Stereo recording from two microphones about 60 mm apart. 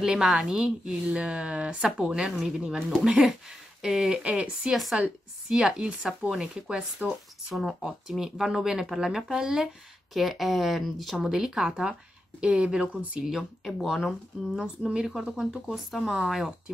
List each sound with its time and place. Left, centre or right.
0.0 s speech: centre
4.2 s speech: right
4.6 s speech: centre
5.5 s speech: centre
7.5 s speech: centre
10.1 s speech: centre
13.4 s speech: centre
14.5 s speech: centre